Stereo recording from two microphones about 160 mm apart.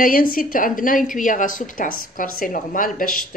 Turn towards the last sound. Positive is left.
turn(degrees=60)  # may be behind; listen again after turning